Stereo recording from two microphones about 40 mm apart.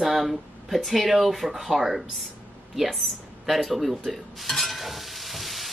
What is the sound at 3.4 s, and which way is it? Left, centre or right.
Stir, centre.